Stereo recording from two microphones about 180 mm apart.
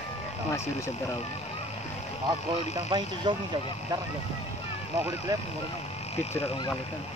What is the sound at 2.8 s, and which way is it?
Speech, 25° right (ahead or behind).